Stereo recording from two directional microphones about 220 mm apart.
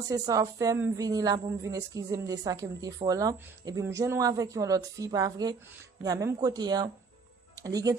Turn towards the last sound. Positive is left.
turn(degrees=-15)  # may be behind; listen again after turning